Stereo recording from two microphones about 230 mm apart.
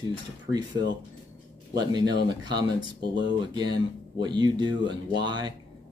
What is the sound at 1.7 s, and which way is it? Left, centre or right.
Speech, centre.